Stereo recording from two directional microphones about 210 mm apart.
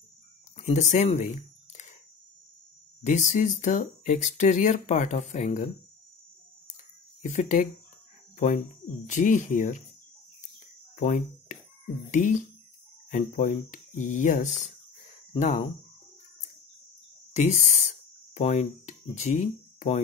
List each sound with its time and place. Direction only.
0.6 s a sound: 35° left (ahead or behind)
3.0 s speech: 35° left (ahead or behind)
7.2 s speech: 35° left (ahead or behind)
11.0 s speech: 35° left (ahead or behind)
17.3 s speech: 35° left (ahead or behind)